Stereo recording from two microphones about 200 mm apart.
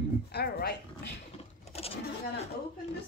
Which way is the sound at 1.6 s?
30° left (ahead or behind).